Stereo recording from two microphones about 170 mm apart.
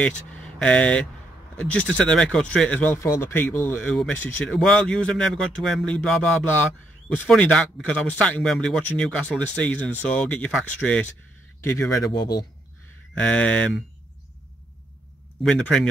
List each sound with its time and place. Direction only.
0.5 s speech: 5° left (ahead or behind)
11.9 s speech: 20° left (ahead or behind)
13.1 s speech: 5° left (ahead or behind)
15.4 s speech: 5° left (ahead or behind)